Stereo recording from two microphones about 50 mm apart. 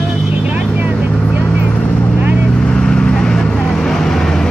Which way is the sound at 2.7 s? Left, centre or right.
Centre.